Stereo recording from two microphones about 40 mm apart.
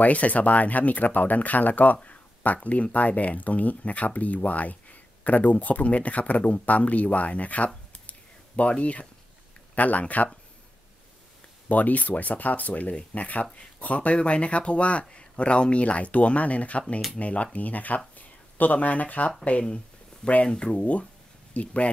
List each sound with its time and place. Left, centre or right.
0.0 s speech: left
11.7 s speech: left
20.2 s speech: centre